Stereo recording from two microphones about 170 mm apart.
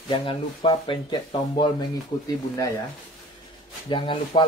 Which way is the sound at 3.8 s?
30° left (ahead or behind).